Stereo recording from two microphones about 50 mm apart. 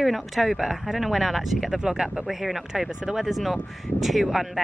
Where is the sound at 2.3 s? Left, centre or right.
Centre.